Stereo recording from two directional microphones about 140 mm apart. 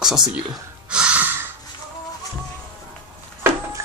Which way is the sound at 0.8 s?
5° right (ahead or behind).